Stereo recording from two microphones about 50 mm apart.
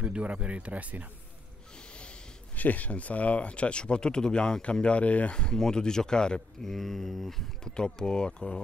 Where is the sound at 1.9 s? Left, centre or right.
Left.